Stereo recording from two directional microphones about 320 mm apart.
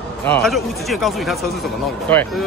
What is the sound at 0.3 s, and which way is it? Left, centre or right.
Speech, centre.